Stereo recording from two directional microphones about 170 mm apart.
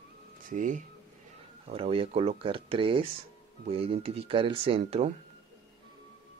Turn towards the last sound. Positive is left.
turn(degrees=-40)  # may be behind; listen again after turning